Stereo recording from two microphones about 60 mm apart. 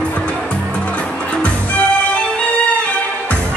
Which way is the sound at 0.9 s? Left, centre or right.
Left.